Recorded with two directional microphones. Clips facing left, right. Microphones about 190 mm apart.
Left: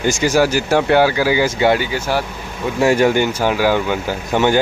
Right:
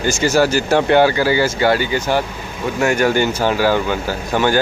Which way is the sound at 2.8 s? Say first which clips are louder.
Left 3 dB; 30° left (ahead or behind).